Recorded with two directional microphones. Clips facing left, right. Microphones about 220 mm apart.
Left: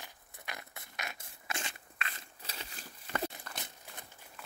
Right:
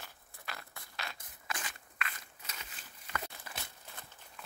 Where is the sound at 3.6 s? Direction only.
20° left (ahead or behind).